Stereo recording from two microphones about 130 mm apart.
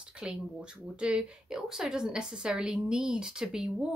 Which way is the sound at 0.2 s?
5° right (ahead or behind).